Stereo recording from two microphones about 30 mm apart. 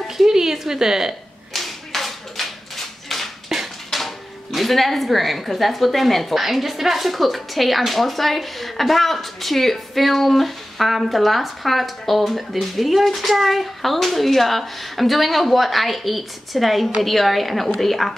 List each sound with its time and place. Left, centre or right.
0.3 s a woman's voice: centre
1.5 s clapping: centre
3.4 s speech: centre